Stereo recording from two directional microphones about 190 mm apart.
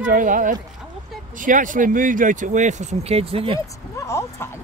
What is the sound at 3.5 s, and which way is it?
Speech, 15° left (ahead or behind).